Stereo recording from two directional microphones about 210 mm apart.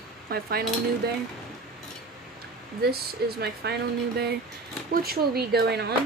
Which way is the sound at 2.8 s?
50° right (ahead or behind).